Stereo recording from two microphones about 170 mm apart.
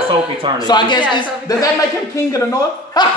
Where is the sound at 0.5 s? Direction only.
25° left (ahead or behind).